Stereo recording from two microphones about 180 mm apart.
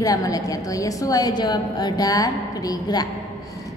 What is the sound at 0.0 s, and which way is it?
A woman's voice, 20° left (ahead or behind).